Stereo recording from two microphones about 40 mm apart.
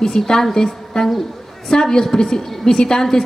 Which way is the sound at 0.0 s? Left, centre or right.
Centre.